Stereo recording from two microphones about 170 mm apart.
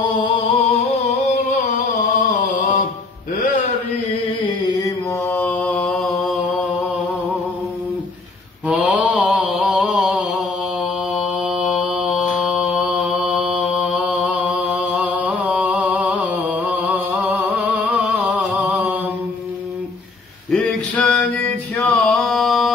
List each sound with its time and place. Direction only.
0.2 s music: 35° left (ahead or behind)
2.1 s a sound: 50° left (ahead or behind)
5.2 s mantra: 10° left (ahead or behind)
8.6 s mantra: 5° right (ahead or behind)
20.5 s male singing: 5° left (ahead or behind)